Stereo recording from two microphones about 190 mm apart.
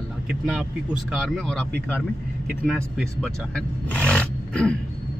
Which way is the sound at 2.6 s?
Centre (ahead or behind).